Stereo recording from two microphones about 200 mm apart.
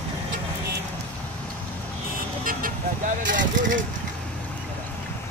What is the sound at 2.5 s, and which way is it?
Vehicle, 45° right (ahead or behind).